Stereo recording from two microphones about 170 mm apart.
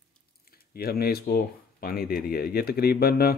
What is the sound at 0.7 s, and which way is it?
Speech, 65° left (ahead or behind).